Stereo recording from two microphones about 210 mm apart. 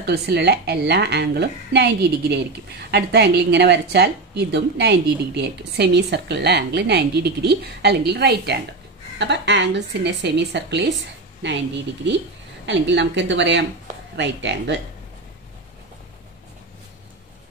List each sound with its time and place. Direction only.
0.0 s a woman's voice: 55° right (ahead or behind)
12.6 s speech: 60° right (ahead or behind)